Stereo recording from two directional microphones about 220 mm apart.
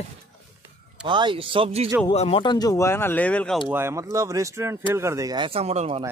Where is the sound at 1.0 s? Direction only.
20° right (ahead or behind).